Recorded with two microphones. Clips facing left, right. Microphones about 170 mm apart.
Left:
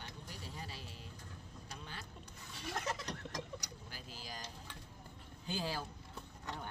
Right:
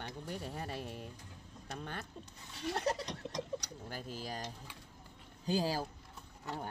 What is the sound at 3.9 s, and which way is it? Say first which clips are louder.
Speech: right 9 dB; 50° right (ahead or behind).